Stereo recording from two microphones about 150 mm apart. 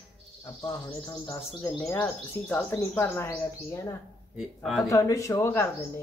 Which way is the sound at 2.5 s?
10° left (ahead or behind).